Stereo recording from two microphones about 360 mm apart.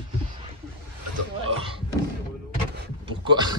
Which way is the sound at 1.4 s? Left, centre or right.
Centre.